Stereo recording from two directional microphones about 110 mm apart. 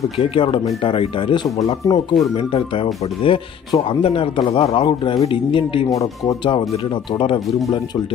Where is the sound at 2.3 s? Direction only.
55° left (ahead or behind).